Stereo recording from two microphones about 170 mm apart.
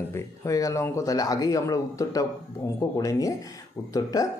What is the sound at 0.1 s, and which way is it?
Speech, 20° left (ahead or behind).